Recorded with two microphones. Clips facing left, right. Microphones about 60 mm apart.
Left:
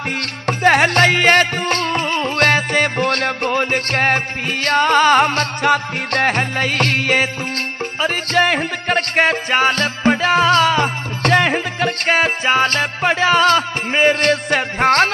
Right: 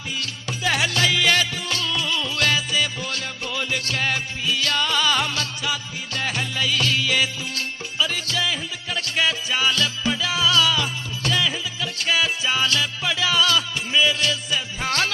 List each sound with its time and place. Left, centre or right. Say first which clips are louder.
0.2 s music: left 12 dB; left